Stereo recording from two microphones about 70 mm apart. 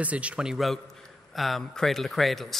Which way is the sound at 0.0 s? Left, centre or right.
Centre.